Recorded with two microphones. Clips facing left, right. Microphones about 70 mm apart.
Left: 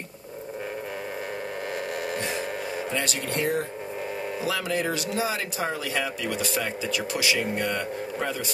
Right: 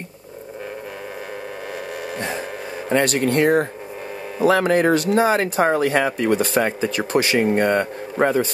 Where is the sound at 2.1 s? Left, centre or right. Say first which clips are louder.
Right 6 dB; right.